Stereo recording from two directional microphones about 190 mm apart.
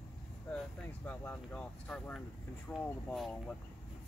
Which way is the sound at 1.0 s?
10° left (ahead or behind).